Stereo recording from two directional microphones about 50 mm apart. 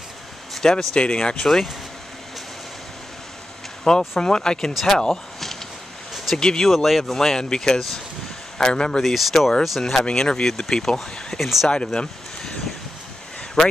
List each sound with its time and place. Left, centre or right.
0.6 s speech: centre
0.9 s speech: centre
1.4 s speech: centre
3.9 s speech: centre
6.1 s a sound: centre
6.4 s speech: centre
6.7 s speech: centre
9.0 s speech: centre
10.0 s speech: centre
11.7 s speech: centre